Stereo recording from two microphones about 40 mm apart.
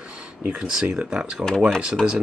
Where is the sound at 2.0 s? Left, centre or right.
Centre.